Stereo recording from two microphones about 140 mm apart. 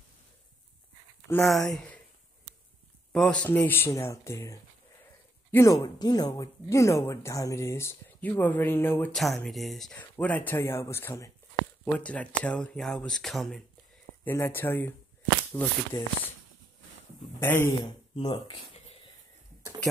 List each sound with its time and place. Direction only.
1.4 s speech: centre (ahead or behind)
3.1 s speech: 5° left (ahead or behind)
9.1 s speech: centre (ahead or behind)
14.2 s speech: 15° left (ahead or behind)
17.4 s speech: 15° left (ahead or behind)
18.1 s speech: 40° left (ahead or behind)